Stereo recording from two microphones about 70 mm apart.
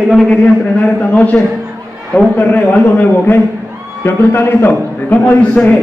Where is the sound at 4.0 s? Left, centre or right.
Left; by 5.7 s centre.